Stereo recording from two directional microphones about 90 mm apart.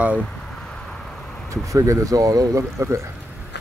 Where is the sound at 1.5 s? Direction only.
35° right (ahead or behind).